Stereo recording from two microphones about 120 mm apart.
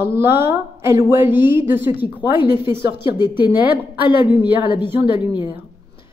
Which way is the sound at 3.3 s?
15° right (ahead or behind).